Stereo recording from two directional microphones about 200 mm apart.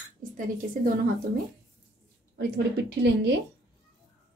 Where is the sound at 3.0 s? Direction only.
60° right (ahead or behind).